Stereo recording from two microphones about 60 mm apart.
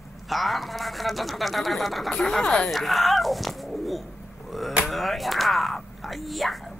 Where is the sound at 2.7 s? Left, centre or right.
Centre.